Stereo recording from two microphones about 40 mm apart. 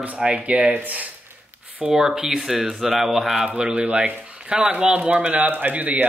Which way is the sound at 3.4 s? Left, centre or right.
Right.